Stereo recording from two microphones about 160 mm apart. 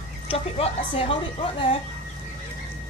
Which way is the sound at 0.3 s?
35° left (ahead or behind).